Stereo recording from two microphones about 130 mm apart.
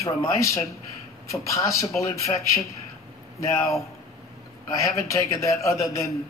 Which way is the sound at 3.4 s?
25° left (ahead or behind).